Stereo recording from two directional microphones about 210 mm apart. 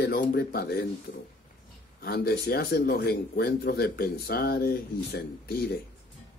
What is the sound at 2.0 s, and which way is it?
Speech, 50° left (ahead or behind).